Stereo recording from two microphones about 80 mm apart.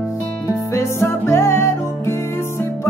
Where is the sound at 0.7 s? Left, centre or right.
Left.